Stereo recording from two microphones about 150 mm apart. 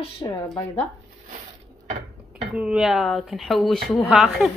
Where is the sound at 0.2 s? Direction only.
25° left (ahead or behind).